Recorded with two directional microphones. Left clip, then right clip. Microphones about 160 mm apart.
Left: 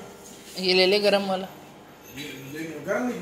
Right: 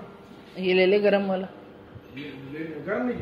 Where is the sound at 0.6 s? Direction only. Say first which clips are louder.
Even; 20° right (ahead or behind).